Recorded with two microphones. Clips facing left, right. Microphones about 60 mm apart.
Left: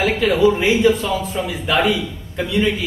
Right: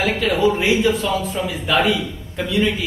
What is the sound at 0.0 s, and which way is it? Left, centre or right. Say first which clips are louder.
A man's voice: left 3 dB; centre.